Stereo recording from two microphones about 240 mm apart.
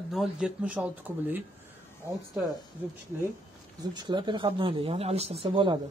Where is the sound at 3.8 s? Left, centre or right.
Centre.